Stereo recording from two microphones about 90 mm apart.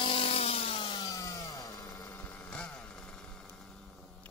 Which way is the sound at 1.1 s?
45° left (ahead or behind).